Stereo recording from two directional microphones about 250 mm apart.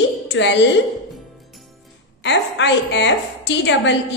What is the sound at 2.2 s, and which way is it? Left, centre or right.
A woman's voice, left.